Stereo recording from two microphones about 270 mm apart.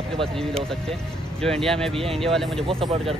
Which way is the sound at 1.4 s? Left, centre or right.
Centre.